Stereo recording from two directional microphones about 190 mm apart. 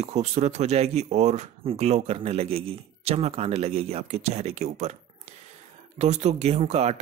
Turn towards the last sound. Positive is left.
turn(degrees=-35)  # may be behind; listen again after turning